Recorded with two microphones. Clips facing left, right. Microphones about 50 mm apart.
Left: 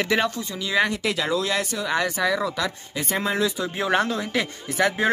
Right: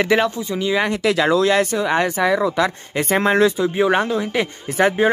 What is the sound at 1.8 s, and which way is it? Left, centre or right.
Speech, right.